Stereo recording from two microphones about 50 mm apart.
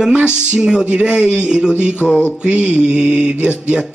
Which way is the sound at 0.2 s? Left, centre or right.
Centre.